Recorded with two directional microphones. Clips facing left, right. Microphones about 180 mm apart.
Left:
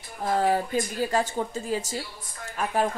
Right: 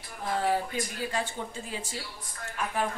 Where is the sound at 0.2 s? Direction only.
40° left (ahead or behind).